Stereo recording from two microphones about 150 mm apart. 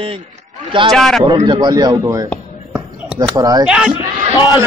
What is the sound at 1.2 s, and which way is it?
A man's voice, 30° right (ahead or behind).